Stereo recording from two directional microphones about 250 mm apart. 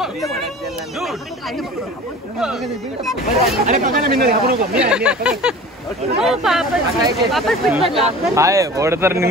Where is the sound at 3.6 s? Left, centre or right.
Right.